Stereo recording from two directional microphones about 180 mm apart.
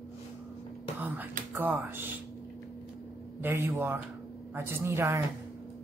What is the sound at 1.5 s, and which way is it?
Speech, 10° right (ahead or behind).